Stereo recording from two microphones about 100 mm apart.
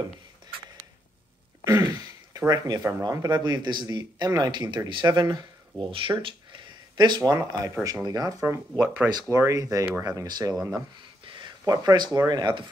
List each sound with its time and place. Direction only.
1.7 s throat clearing: 40° right (ahead or behind)
3.0 s speech: 35° right (ahead or behind)
8.7 s speech: 15° right (ahead or behind)
9.3 s speech: 30° right (ahead or behind)
10.2 s speech: 45° right (ahead or behind)
10.5 s speech: 5° right (ahead or behind)
11.2 s a sound: 55° right (ahead or behind)
11.7 s speech: 40° right (ahead or behind)